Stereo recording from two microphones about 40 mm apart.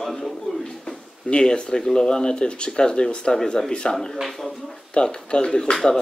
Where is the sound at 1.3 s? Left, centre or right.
Centre.